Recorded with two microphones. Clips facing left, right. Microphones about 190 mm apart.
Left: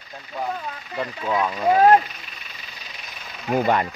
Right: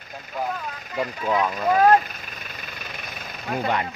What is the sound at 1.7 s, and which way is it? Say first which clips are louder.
Speech: left 2 dB; 25° left (ahead or behind).